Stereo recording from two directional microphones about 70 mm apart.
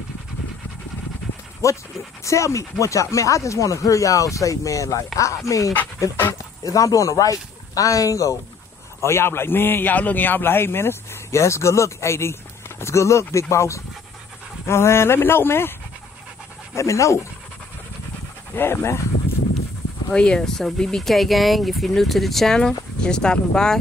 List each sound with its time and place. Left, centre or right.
1.6 s speech: left
9.0 s a man's voice: left
16.7 s speech: left
18.5 s a man's voice: left
20.1 s speech: centre